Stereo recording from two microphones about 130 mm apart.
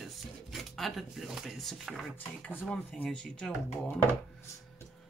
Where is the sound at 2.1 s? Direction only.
10° left (ahead or behind).